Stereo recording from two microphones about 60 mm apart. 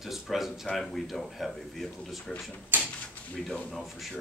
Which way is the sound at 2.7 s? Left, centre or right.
Right.